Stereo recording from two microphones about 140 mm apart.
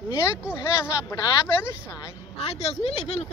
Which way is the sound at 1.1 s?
30° left (ahead or behind).